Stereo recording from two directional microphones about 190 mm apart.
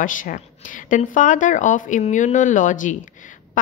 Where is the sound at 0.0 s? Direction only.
45° left (ahead or behind).